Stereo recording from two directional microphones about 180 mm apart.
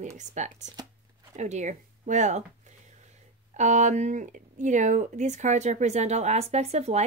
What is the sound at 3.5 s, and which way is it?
Speech, 40° right (ahead or behind).